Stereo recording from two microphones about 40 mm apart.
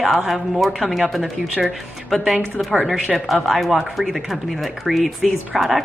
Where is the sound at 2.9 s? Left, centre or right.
Centre.